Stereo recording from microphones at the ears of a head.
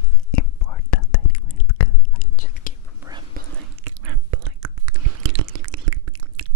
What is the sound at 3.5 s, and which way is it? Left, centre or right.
Whispering, right.